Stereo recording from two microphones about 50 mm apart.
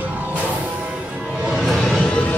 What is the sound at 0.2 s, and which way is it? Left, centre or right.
Music, right.